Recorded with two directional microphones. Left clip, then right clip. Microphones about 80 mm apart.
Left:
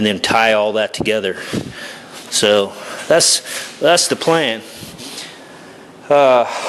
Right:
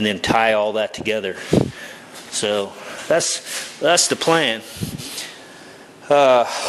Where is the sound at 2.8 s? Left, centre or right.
Centre.